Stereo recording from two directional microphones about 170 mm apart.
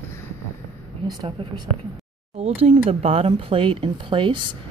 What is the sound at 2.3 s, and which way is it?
Speech, 35° right (ahead or behind).